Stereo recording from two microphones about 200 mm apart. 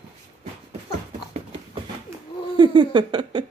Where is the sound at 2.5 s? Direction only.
25° right (ahead or behind).